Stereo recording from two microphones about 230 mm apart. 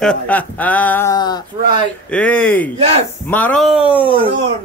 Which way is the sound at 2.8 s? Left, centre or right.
Right.